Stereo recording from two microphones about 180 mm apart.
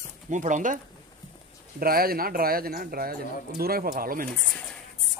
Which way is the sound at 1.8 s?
55° right (ahead or behind).